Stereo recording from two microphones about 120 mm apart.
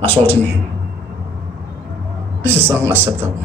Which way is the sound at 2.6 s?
20° right (ahead or behind).